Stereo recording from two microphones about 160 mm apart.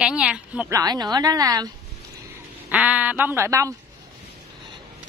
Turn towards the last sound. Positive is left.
turn(degrees=-20)  # may be behind; listen again after turning